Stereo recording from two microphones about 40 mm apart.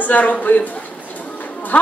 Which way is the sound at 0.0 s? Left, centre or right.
Left.